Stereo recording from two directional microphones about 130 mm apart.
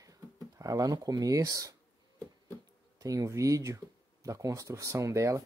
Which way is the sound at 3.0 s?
25° right (ahead or behind).